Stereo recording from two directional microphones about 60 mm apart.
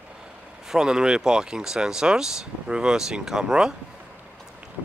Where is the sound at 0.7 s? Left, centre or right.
Centre.